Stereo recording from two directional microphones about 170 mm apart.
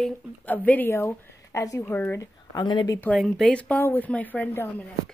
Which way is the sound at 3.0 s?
5° left (ahead or behind).